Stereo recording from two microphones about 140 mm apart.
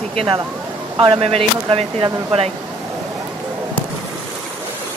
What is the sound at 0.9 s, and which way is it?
Speech, 35° right (ahead or behind).